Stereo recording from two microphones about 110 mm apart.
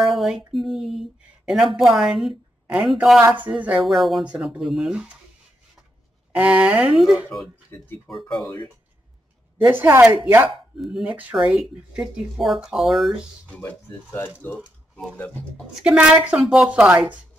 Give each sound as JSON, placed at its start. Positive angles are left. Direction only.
{"t": 0.0, "sound": "a sound", "side_deg": 0}
{"t": 0.5, "sound": "speech", "side_deg": 0}
{"t": 3.2, "sound": "speech", "side_deg": -15}
{"t": 3.8, "sound": "speech", "side_deg": 0}
{"t": 6.3, "sound": "speech", "side_deg": -10}
{"t": 7.7, "sound": "speech", "side_deg": 20}
{"t": 8.1, "sound": "speech", "side_deg": 0}
{"t": 9.7, "sound": "speech", "side_deg": -20}
{"t": 10.8, "sound": "speech", "side_deg": -5}
{"t": 13.5, "sound": "speech", "side_deg": 15}
{"t": 15.6, "sound": "speech", "side_deg": -10}